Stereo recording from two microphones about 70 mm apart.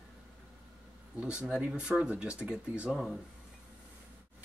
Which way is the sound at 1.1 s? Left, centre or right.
Centre.